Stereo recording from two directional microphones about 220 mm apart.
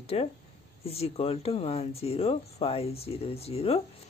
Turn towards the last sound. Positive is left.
turn(degrees=30)  # may be behind; listen again after turning